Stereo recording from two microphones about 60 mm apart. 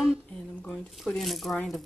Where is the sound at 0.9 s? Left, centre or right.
Centre.